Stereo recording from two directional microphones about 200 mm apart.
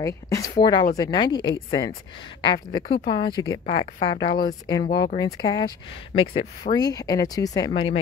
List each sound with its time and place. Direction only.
0.0 s speech: 15° left (ahead or behind)